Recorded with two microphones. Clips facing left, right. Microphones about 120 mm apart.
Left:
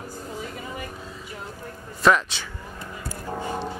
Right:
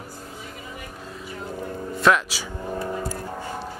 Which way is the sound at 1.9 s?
Centre (ahead or behind).